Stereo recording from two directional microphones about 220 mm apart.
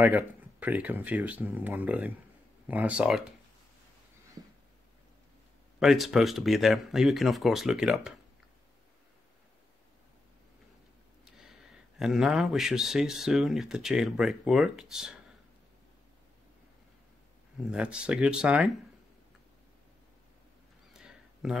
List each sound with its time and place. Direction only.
0.0 s speech: 5° right (ahead or behind)
5.8 s speech: centre (ahead or behind)
12.0 s speech: 5° right (ahead or behind)
17.6 s speech: 5° right (ahead or behind)
21.0 s a sound: 5° right (ahead or behind)